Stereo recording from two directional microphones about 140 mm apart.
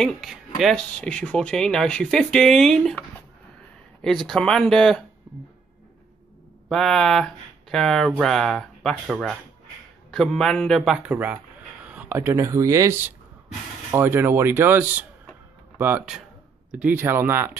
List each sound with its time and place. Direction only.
0.0 s speech: centre (ahead or behind)
6.7 s speech: centre (ahead or behind)
11.1 s speech: 10° right (ahead or behind)
16.7 s speech: 10° right (ahead or behind)